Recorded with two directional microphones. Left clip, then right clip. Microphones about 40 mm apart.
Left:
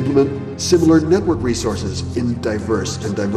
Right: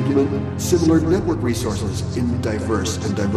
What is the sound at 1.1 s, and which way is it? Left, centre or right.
A man's voice, centre.